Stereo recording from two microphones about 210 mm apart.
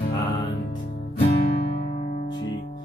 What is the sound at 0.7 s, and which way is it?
Music, 25° left (ahead or behind).